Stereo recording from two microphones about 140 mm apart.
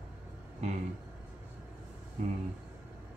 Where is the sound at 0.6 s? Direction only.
55° right (ahead or behind).